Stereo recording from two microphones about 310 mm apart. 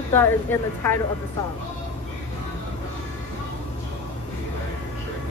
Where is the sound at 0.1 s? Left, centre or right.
Centre.